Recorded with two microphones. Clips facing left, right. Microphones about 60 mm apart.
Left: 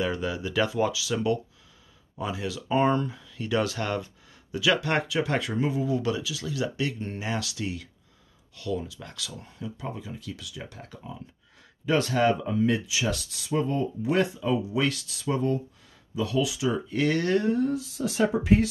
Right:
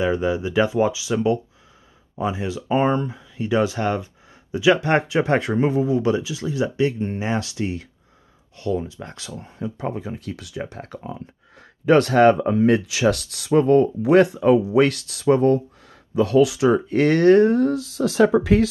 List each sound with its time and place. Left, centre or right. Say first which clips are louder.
0.0 s speech: right 7 dB; right
9.8 s speech: right 9 dB; right